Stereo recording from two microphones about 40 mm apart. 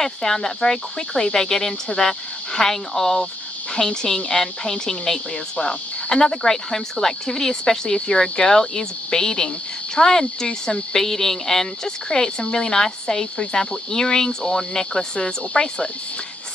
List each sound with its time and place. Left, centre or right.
0.0 s speech: centre